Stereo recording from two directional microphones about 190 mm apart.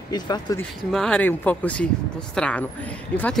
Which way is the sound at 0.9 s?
5° left (ahead or behind).